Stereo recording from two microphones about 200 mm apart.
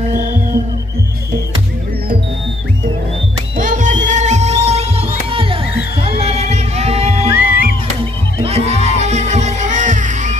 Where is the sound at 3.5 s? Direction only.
40° right (ahead or behind).